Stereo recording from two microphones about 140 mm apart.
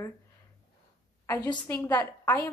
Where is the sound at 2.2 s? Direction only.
25° left (ahead or behind).